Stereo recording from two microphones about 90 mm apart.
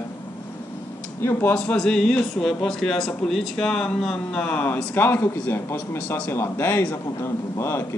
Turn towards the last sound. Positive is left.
turn(degrees=30)  # may be behind; listen again after turning